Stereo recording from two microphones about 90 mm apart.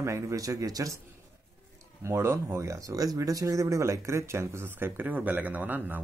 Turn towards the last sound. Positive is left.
turn(degrees=-20)  # may be behind; listen again after turning